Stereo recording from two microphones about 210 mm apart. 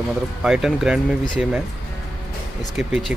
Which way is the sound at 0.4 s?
Centre (ahead or behind).